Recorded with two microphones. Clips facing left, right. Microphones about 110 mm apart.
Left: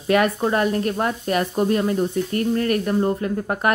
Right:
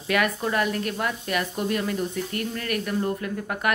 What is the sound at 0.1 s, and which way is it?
Speech, 35° left (ahead or behind).